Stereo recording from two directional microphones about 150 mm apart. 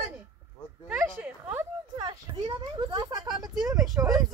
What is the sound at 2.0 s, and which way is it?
Speech, 30° right (ahead or behind).